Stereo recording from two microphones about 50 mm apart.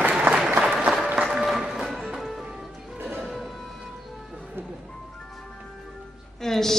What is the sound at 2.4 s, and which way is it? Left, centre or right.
Music, centre.